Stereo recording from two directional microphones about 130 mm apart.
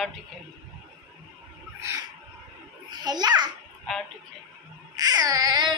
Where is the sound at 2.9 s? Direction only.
35° right (ahead or behind).